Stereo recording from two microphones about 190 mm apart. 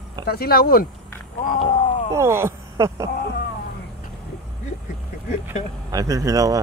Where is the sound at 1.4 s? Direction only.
40° left (ahead or behind).